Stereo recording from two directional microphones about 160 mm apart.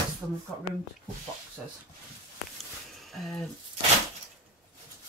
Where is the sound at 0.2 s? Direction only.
Centre (ahead or behind).